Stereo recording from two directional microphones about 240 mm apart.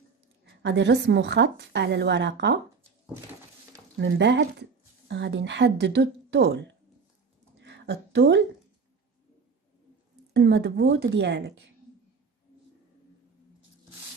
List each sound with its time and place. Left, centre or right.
0.6 s a woman's voice: right
4.0 s speech: right
7.5 s a sound: right
10.3 s a woman's voice: right